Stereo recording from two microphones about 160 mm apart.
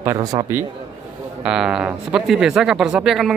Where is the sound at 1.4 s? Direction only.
5° right (ahead or behind).